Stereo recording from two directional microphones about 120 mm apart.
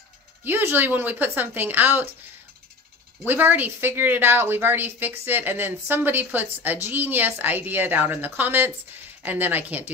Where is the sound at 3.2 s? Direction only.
15° right (ahead or behind).